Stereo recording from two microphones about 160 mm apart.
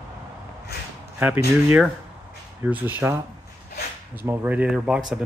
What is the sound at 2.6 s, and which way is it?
Speech, 10° right (ahead or behind).